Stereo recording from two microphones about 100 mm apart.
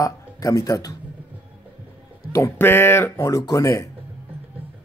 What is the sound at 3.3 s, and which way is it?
Speech, 35° left (ahead or behind).